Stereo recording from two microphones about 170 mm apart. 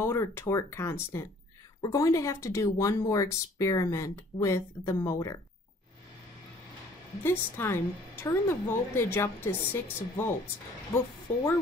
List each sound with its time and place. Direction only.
0.0 s speech: 15° left (ahead or behind)
7.2 s speech: 15° left (ahead or behind)